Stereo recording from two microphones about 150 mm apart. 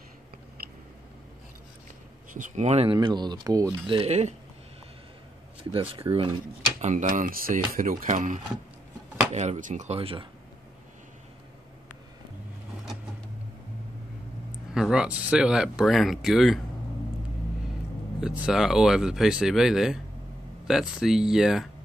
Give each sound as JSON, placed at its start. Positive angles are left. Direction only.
{"t": 2.3, "sound": "speech", "side_deg": -50}
{"t": 2.9, "sound": "speech", "side_deg": -30}
{"t": 5.6, "sound": "speech", "side_deg": -35}
{"t": 6.8, "sound": "speech", "side_deg": -55}
{"t": 9.3, "sound": "speech", "side_deg": -50}
{"t": 9.9, "sound": "speech", "side_deg": -40}
{"t": 14.5, "sound": "speech", "side_deg": -5}
{"t": 18.2, "sound": "speech", "side_deg": -5}